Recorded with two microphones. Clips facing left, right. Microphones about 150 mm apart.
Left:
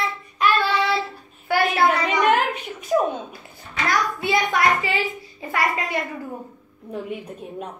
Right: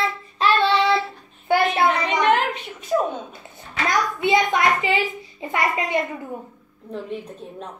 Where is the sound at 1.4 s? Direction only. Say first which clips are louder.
Right 2 dB; 20° right (ahead or behind).